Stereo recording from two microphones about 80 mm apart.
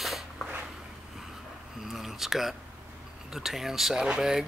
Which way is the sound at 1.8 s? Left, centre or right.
Centre.